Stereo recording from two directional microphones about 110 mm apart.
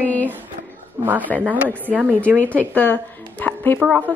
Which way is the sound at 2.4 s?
15° left (ahead or behind).